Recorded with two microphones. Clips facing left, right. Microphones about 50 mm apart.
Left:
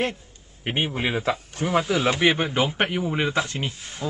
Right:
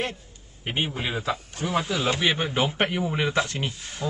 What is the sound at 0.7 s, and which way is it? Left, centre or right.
Speech, left.